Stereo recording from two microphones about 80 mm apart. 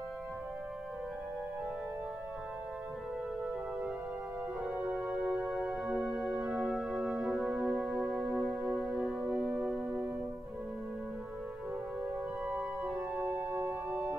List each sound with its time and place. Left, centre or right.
4.8 s music: centre
12.4 s organ: centre
13.2 s music: right